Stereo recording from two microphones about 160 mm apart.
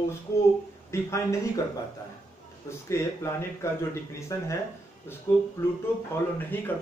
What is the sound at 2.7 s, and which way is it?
Speech, 15° left (ahead or behind).